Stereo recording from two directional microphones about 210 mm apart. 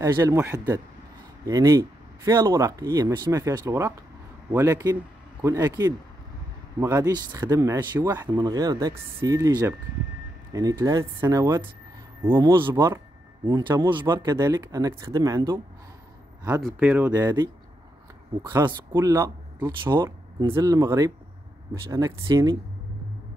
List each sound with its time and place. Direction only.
0.0 s speech: 15° right (ahead or behind)
16.6 s speech: 10° right (ahead or behind)